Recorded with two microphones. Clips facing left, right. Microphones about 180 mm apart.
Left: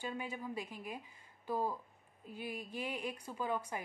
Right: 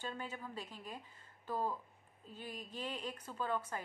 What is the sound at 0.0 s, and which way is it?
A woman's voice, 10° left (ahead or behind).